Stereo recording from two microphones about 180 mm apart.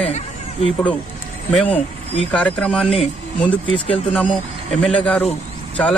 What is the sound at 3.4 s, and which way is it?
Speech, 30° left (ahead or behind).